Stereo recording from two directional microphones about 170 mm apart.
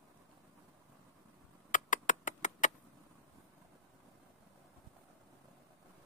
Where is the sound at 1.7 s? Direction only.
50° left (ahead or behind).